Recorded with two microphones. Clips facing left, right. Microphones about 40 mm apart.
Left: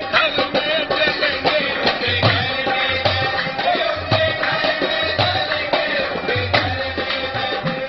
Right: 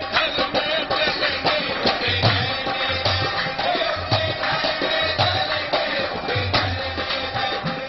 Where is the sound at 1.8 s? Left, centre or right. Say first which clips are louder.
Left 3 dB; left.